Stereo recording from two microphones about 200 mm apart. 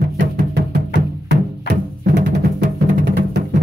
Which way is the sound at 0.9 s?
60° right (ahead or behind).